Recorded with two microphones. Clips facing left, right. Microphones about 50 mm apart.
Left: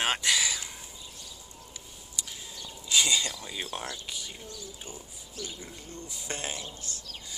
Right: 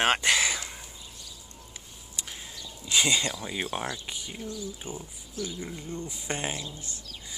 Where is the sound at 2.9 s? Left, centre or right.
Right.